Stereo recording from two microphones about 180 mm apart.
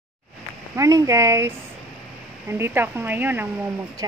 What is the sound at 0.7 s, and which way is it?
Speech, 20° right (ahead or behind).